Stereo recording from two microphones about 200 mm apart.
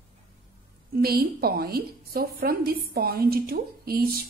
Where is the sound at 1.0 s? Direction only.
50° right (ahead or behind).